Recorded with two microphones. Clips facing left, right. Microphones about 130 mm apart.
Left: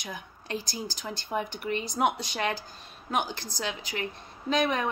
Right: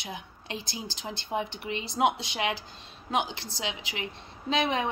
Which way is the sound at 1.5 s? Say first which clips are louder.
Left 3 dB; 50° left (ahead or behind).